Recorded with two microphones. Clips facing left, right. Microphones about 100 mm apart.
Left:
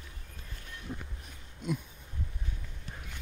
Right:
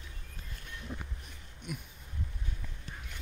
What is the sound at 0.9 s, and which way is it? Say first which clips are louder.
Vehicle: left 2 dB; 10° left (ahead or behind).